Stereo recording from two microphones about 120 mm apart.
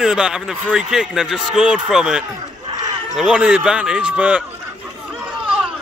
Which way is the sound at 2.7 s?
35° right (ahead or behind).